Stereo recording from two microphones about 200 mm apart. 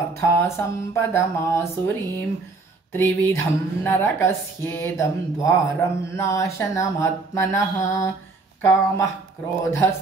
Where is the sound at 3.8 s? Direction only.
10° left (ahead or behind).